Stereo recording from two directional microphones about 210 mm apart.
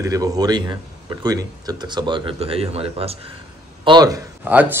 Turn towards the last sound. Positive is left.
turn(degrees=-5)  # may be behind; listen again after turning